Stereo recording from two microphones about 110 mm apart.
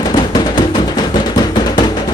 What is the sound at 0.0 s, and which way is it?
Music, 40° left (ahead or behind).